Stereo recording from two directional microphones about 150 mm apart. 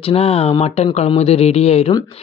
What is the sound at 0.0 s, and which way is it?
Speech, 40° left (ahead or behind).